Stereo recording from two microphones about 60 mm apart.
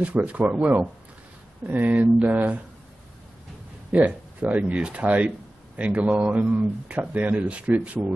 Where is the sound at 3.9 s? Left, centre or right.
Right.